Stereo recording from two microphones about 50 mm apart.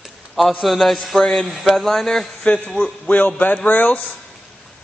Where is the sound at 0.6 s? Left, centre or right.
Centre.